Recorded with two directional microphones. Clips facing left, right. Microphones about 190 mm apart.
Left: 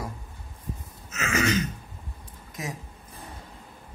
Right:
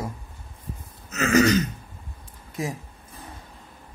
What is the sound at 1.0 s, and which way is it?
Throat clearing, 35° right (ahead or behind).